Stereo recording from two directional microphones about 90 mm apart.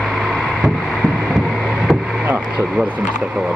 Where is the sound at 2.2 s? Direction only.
15° right (ahead or behind).